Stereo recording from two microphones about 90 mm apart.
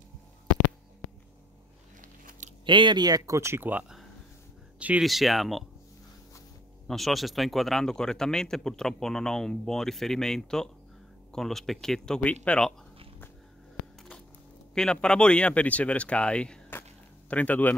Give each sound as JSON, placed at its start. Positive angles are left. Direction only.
{"t": 2.6, "sound": "speech", "side_deg": -60}
{"t": 5.0, "sound": "a man's voice", "side_deg": 0}
{"t": 6.9, "sound": "a man's voice", "side_deg": 0}
{"t": 14.7, "sound": "speech", "side_deg": 10}